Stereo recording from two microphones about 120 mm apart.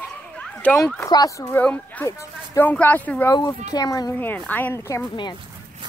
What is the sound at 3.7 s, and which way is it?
Speech, 30° left (ahead or behind).